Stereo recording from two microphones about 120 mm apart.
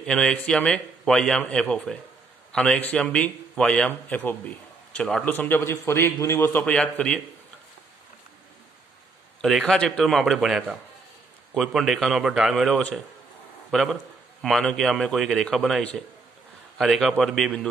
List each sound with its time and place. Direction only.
0.0 s a man's voice: 5° left (ahead or behind); by 6.6 s 20° left (ahead or behind)
6.6 s a man's voice: 10° left (ahead or behind)
9.4 s a man's voice: centre (ahead or behind)